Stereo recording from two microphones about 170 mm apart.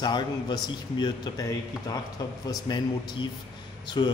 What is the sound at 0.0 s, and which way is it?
Speech, 25° left (ahead or behind).